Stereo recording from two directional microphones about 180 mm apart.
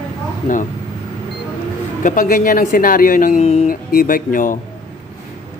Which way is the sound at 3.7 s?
50° left (ahead or behind).